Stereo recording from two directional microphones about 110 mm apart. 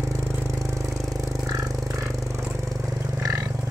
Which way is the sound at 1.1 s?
30° right (ahead or behind).